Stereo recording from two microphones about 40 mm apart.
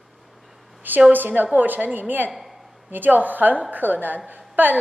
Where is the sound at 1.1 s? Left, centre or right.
Right.